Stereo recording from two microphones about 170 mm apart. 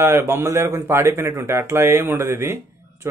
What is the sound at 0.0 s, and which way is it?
Speech, 15° right (ahead or behind).